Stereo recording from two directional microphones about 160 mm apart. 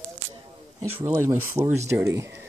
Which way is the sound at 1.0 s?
15° right (ahead or behind).